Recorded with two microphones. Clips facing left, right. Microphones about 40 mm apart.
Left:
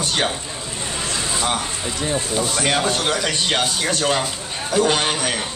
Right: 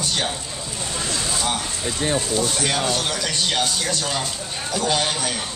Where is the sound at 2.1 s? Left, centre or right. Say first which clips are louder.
Left 2 dB; centre.